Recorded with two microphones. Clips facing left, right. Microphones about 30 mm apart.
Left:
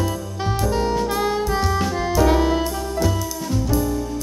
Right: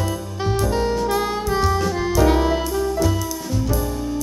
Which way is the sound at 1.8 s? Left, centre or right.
Centre.